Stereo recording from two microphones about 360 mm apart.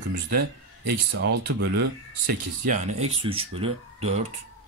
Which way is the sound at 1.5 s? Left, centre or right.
Right.